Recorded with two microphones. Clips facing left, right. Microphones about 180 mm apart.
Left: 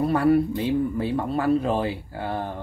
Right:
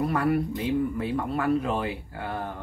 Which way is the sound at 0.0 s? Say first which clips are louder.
Left 5 dB; 30° left (ahead or behind).